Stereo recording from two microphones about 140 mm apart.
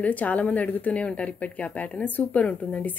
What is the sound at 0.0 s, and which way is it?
Speech, 10° left (ahead or behind).